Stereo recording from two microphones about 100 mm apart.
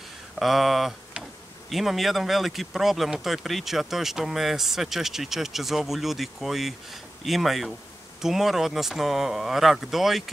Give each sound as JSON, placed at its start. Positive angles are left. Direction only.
{"t": 0.4, "sound": "speech", "side_deg": 0}